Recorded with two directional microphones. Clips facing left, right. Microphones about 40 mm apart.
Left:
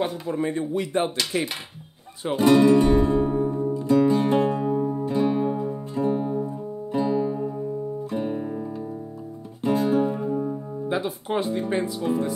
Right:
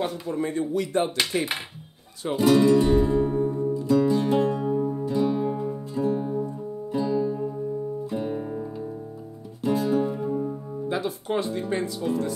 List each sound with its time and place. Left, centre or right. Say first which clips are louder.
0.0 s speech: left 2 dB; centre
1.3 s speech: left 1 dB; centre
2.3 s speech: left 2 dB; left
3.3 s music: left 1 dB; left
5.5 s music: left 1 dB; centre
9.8 s music: left 2 dB; left